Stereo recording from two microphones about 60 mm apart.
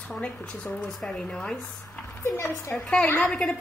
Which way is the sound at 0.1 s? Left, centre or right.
Centre.